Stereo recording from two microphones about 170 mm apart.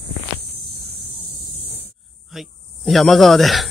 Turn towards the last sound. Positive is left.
turn(degrees=0)  # may be behind; listen again after turning